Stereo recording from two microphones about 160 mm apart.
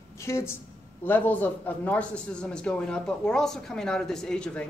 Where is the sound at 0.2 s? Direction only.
15° left (ahead or behind).